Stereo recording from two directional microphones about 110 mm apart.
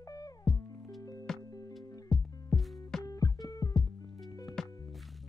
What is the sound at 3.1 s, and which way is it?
Music, 35° left (ahead or behind).